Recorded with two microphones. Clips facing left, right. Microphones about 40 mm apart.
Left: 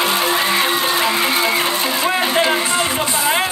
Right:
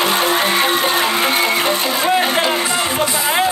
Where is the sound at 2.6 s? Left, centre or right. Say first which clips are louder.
Even; right.